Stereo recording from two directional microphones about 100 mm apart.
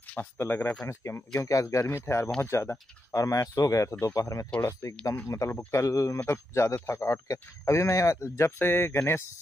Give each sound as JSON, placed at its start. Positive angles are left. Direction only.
{"t": 0.1, "sound": "speech", "side_deg": 20}